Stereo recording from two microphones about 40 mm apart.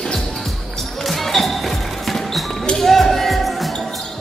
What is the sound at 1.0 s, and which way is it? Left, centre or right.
Music, centre.